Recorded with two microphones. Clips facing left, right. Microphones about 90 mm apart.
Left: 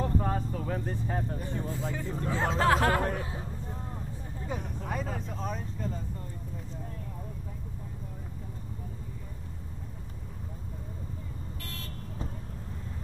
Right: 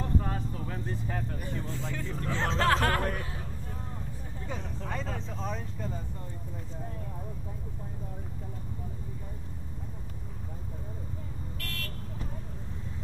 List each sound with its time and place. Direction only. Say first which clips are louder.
0.0 s vehicle: left 3 dB; 30° left (ahead or behind)
0.7 s speech: left 2 dB; 40° left (ahead or behind)
1.7 s speech: left 2 dB; 20° left (ahead or behind)
4.5 s speech: left 2 dB; 10° left (ahead or behind)
11.6 s car alarm: right 5 dB; 20° left (ahead or behind)